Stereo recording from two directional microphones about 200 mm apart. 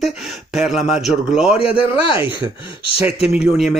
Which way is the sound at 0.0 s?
Centre (ahead or behind).